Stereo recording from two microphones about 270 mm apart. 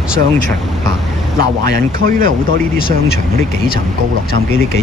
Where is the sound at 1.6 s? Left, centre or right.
Right.